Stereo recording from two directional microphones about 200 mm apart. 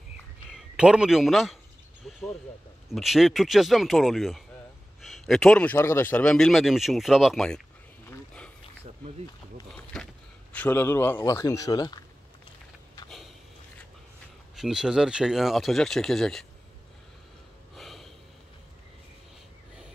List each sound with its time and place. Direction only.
0.7 s a man's voice: 5° right (ahead or behind)
2.0 s a sound: centre (ahead or behind)
2.9 s a man's voice: centre (ahead or behind)
9.9 s a sound: centre (ahead or behind)
10.5 s speech: 10° left (ahead or behind)
14.5 s a man's voice: centre (ahead or behind)
17.7 s snort: centre (ahead or behind)